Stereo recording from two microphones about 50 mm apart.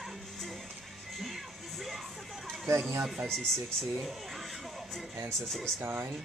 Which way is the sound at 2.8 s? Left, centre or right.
Right.